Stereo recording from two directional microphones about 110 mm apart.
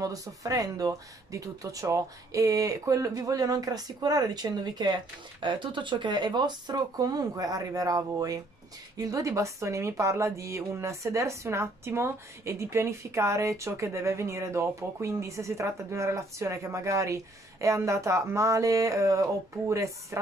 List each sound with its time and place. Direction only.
0.0 s speech: 30° right (ahead or behind)